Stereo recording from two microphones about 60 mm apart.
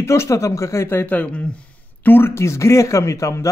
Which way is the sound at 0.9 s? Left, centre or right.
Left.